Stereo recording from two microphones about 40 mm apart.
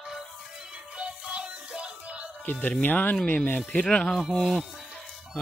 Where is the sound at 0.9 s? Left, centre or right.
Right.